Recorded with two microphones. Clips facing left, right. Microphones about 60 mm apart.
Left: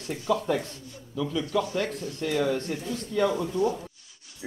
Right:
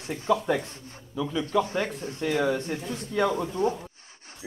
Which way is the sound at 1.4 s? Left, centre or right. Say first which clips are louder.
Right 2 dB; right.